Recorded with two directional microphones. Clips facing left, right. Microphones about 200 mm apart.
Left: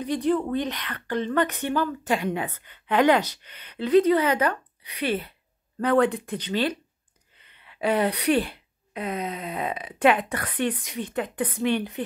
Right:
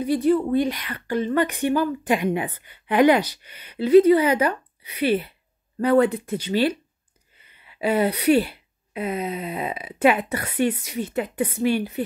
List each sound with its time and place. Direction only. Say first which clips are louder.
0.0 s a woman's voice: right 4 dB; 5° right (ahead or behind)